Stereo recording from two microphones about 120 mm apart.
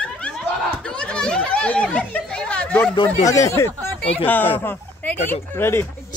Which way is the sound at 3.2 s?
25° left (ahead or behind).